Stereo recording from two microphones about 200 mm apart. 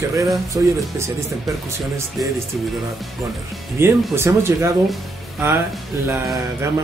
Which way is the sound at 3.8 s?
15° right (ahead or behind).